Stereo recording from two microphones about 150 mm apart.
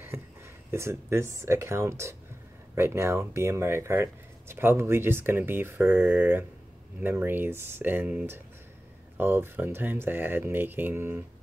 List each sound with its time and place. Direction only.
0.1 s speech: 20° right (ahead or behind)